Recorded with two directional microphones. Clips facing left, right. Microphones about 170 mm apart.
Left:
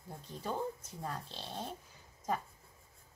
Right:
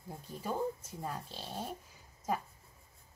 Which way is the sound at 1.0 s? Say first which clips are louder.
Right 1 dB; 10° right (ahead or behind).